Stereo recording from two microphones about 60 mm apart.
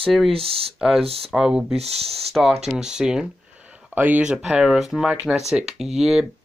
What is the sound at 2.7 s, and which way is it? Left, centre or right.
Speech, centre.